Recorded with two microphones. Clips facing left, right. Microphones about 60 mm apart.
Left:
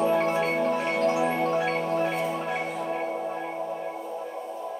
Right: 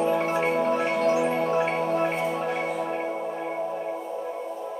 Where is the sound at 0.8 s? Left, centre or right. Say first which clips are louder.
Right 2 dB; centre.